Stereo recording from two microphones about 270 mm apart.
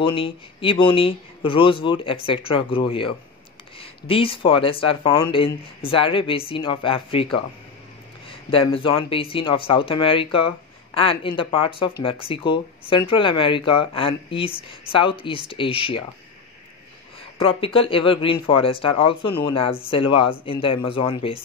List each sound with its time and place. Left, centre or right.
0.0 s speech: centre
17.4 s speech: centre